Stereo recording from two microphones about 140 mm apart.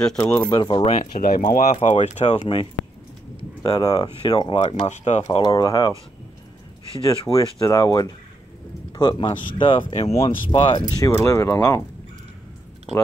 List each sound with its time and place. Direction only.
0.0 s speech: 10° left (ahead or behind)
0.4 s speech: 30° left (ahead or behind)
0.9 s speech: 80° left
1.8 s speech: 55° left (ahead or behind)
2.4 s speech: 35° left (ahead or behind)
4.6 s speech: 55° left (ahead or behind)
5.4 s speech: 30° left (ahead or behind)
7.1 s speech: 25° left (ahead or behind)
11.0 s speech: 20° left (ahead or behind)